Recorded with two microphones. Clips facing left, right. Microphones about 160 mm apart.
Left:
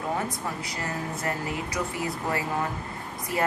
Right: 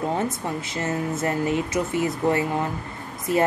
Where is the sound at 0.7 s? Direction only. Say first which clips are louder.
Right 6 dB; 25° right (ahead or behind).